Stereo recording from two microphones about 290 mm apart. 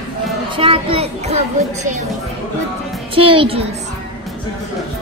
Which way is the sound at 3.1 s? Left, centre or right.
Centre.